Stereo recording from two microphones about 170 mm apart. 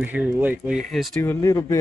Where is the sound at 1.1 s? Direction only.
15° left (ahead or behind).